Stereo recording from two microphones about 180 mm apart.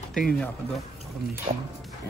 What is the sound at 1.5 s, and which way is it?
Speech, 35° right (ahead or behind).